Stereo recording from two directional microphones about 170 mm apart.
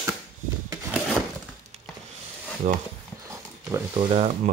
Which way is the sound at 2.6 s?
45° right (ahead or behind).